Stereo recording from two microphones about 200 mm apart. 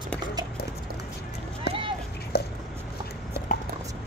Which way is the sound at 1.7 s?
55° left (ahead or behind).